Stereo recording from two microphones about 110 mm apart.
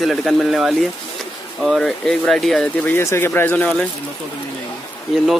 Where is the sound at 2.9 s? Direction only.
20° left (ahead or behind).